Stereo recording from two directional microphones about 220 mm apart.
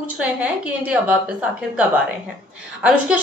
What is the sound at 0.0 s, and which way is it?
A woman's voice, 5° right (ahead or behind).